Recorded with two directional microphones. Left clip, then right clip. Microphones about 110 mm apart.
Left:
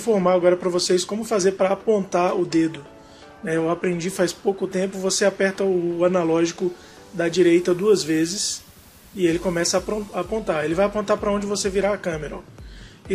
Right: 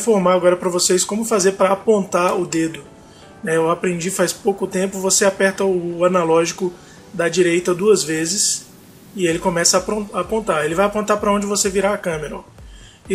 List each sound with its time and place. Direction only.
0.0 s speech: 35° left (ahead or behind)